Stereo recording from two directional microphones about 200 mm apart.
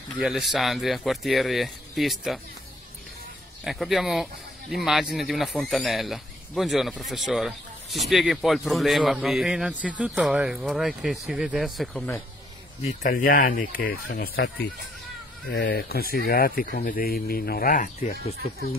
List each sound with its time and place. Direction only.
0.2 s speech: centre (ahead or behind)
3.6 s speech: centre (ahead or behind)
12.8 s speech: 45° left (ahead or behind)
15.5 s speech: 55° left (ahead or behind); by 18.3 s 35° left (ahead or behind)
18.4 s speech: 50° left (ahead or behind)